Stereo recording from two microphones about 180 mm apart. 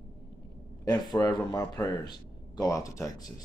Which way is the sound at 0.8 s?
20° left (ahead or behind).